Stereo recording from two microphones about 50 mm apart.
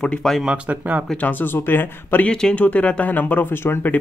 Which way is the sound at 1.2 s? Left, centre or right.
Left.